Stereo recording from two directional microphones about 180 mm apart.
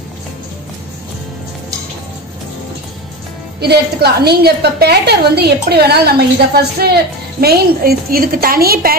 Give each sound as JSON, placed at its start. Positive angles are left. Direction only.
{"t": 3.6, "sound": "a woman's voice", "side_deg": -65}